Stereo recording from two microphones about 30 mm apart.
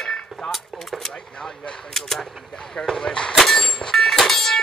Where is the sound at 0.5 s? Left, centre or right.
Centre.